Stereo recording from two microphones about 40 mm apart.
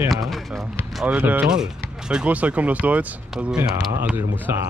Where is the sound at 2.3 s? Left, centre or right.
Right.